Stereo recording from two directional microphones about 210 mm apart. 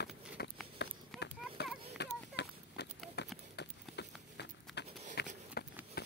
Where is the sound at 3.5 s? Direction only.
55° left (ahead or behind).